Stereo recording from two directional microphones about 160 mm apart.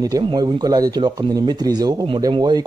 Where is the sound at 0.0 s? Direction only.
25° right (ahead or behind).